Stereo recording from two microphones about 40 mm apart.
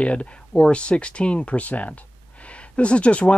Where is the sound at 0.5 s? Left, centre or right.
Left.